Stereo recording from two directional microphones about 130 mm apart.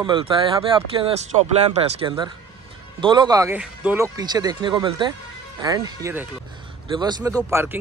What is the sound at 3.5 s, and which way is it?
Speech, 10° right (ahead or behind).